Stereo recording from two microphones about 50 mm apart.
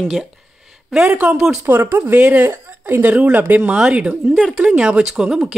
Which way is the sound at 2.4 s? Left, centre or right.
Right.